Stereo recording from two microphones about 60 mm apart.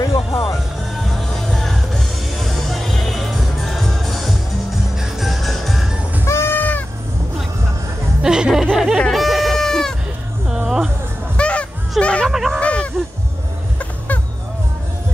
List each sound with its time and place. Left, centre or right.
0.0 s music: left
1.3 s music: centre
6.2 s sheep: left
8.2 s music: centre
8.7 s snicker: centre
9.1 s goat: centre
10.5 s music: centre
11.3 s music: centre
12.0 s a sound: centre
12.3 s a sound: centre
12.5 s a sound: centre
13.7 s fowl: left